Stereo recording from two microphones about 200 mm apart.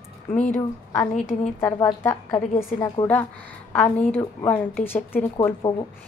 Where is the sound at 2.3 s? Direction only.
35° left (ahead or behind).